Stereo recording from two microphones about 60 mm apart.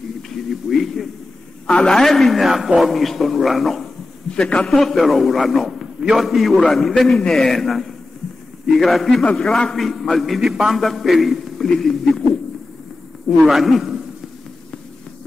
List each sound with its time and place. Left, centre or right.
0.3 s a sound: centre
1.7 s a man's voice: centre
4.3 s a man's voice: centre
9.2 s a man's voice: centre
9.8 s a man's voice: centre
13.5 s a man's voice: centre